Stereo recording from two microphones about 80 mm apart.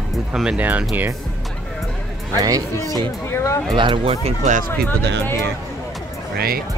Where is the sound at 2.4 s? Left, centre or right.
Right.